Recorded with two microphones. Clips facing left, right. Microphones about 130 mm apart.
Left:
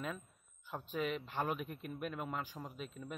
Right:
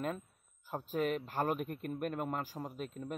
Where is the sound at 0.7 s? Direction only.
40° right (ahead or behind).